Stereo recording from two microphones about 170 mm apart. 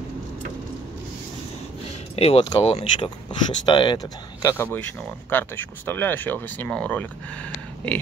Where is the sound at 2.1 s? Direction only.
35° left (ahead or behind).